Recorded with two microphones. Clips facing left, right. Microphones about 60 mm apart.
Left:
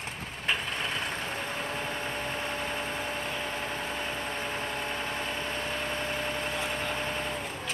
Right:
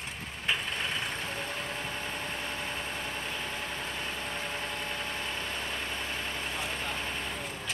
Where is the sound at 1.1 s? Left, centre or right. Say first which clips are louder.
Left 2 dB; centre.